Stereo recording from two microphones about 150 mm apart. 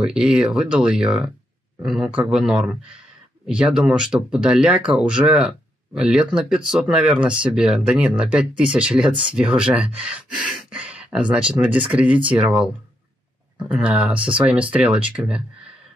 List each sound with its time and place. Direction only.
0.0 s speech: 5° right (ahead or behind)